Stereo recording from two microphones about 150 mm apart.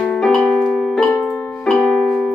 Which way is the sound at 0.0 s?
5° left (ahead or behind).